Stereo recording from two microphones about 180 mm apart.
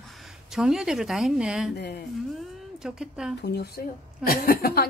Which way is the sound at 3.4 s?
65° left (ahead or behind).